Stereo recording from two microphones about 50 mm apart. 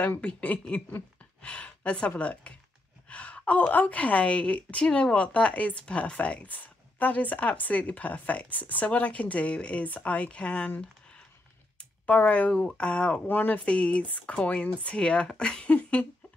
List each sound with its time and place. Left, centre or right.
0.2 s speech: left
3.1 s gasp: left
3.5 s speech: left
11.8 s speech: left
13.2 s speech: left
13.7 s speech: left